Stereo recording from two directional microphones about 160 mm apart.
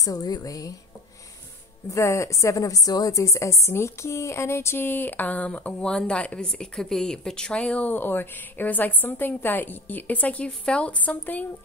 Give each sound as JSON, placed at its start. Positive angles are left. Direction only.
{"t": 0.0, "sound": "a woman's voice", "side_deg": 25}
{"t": 1.9, "sound": "a woman's voice", "side_deg": 20}